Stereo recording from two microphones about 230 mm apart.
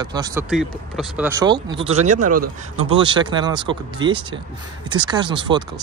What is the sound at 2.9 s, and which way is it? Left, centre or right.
Speech, right.